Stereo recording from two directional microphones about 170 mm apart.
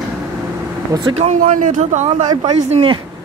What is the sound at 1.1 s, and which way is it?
A man's voice, 45° right (ahead or behind).